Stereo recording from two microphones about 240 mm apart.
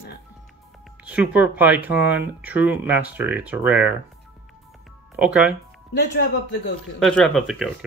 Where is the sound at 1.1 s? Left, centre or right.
Centre.